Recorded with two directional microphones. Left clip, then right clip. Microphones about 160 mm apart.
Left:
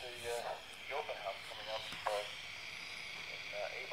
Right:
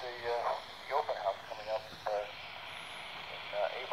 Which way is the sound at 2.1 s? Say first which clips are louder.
Right 3 dB; 55° left (ahead or behind).